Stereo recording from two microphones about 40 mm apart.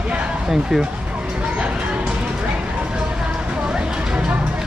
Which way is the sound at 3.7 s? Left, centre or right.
Right.